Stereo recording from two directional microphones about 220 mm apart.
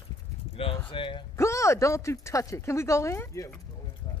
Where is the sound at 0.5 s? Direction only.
25° left (ahead or behind).